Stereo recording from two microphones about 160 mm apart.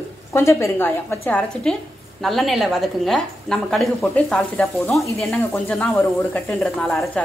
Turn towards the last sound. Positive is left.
turn(degrees=5)  # may be behind; listen again after turning